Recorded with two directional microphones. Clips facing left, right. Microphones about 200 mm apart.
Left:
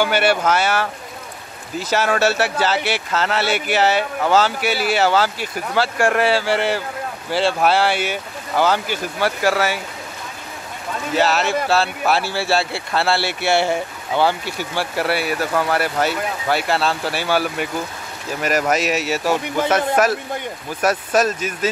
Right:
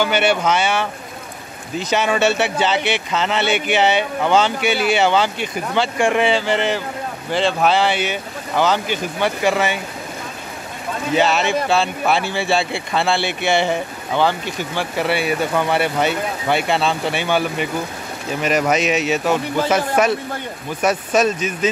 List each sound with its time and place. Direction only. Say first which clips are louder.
0.0 s a man's voice: even; 5° left (ahead or behind)
11.1 s a man's voice: right 1 dB; centre (ahead or behind)
20.8 s a man's voice: right 1 dB; 5° left (ahead or behind)